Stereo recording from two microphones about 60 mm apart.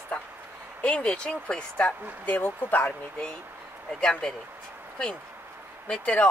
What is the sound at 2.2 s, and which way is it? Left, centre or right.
Speech, left.